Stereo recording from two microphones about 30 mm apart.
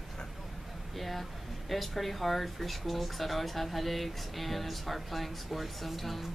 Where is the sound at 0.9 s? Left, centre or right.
Centre.